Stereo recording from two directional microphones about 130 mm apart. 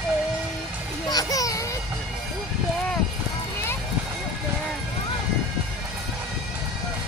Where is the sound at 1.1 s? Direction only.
25° left (ahead or behind).